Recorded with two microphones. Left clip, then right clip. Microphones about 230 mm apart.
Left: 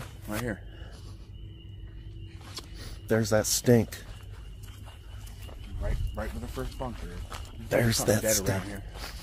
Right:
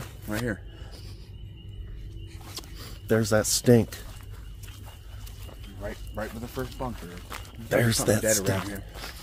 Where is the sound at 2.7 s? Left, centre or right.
Centre.